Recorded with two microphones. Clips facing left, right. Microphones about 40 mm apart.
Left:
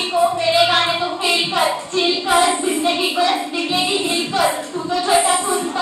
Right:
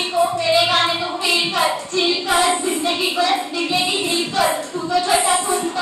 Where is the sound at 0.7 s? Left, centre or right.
Left.